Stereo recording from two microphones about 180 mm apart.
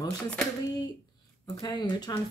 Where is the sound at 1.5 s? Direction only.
25° left (ahead or behind).